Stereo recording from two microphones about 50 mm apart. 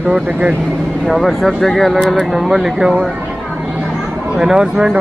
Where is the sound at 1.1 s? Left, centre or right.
Centre.